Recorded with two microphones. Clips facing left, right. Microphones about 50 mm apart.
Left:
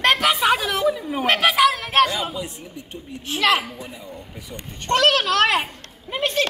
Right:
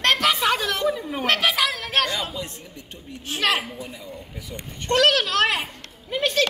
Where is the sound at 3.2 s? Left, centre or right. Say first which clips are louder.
Left 4 dB; left.